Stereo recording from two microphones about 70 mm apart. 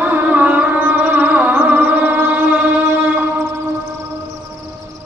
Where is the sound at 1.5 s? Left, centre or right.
Right.